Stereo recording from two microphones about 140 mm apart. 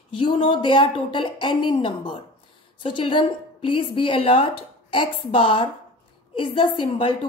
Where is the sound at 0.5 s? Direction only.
35° left (ahead or behind).